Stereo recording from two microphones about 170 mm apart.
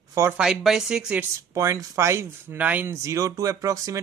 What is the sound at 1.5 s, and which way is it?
Speech, 20° right (ahead or behind).